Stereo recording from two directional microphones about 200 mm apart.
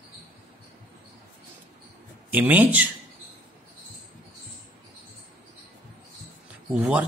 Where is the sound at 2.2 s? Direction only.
10° right (ahead or behind).